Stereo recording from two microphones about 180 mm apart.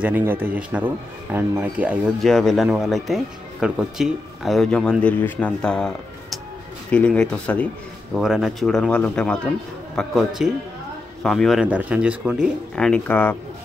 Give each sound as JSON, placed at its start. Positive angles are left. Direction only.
{"t": 0.0, "sound": "speech", "side_deg": -10}
{"t": 12.7, "sound": "speech", "side_deg": 5}